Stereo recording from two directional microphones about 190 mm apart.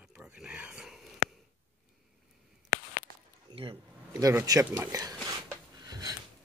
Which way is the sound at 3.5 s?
30° right (ahead or behind).